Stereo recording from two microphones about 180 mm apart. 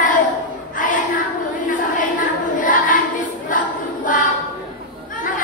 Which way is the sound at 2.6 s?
45° left (ahead or behind).